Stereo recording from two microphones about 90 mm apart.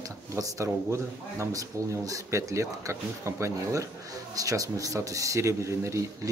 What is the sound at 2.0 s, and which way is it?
Speech, 35° right (ahead or behind).